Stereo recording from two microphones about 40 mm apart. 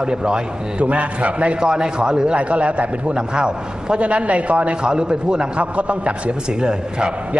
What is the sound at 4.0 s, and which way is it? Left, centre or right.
Speech, right.